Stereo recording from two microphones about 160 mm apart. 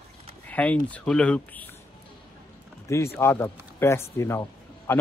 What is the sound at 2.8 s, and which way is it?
A man's voice, 20° left (ahead or behind).